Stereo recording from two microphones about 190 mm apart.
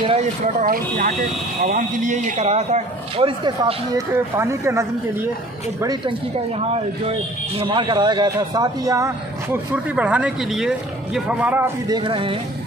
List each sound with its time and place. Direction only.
0.0 s speech: 30° right (ahead or behind)
0.7 s speech: 45° right (ahead or behind); by 6.1 s 20° right (ahead or behind)
6.6 s a man's voice: 30° right (ahead or behind); by 11.7 s 10° right (ahead or behind)
11.9 s speech: 25° right (ahead or behind)